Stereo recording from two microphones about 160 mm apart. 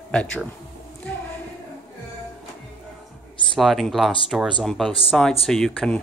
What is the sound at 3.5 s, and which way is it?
Speech, centre (ahead or behind).